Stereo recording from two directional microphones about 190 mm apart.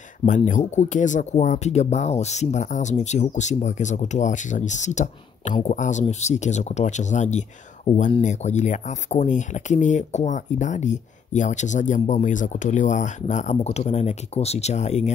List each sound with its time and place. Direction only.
0.2 s speech: 40° left (ahead or behind)